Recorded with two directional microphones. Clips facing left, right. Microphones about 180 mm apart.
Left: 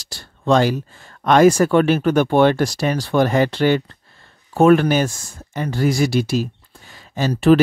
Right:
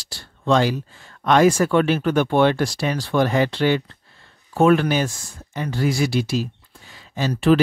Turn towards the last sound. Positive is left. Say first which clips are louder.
# left 3 dB
turn(degrees=45)  # may be behind; listen again after turning